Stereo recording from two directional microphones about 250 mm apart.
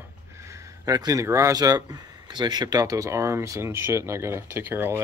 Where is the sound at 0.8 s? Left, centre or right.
Centre.